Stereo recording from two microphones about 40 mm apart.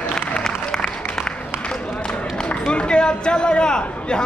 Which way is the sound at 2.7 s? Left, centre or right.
Left.